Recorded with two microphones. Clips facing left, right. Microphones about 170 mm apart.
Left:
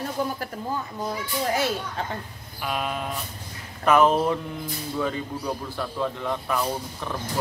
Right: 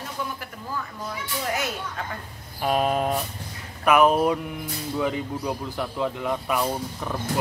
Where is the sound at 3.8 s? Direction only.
15° right (ahead or behind).